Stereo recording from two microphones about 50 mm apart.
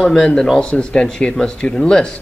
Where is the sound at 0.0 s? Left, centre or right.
Centre.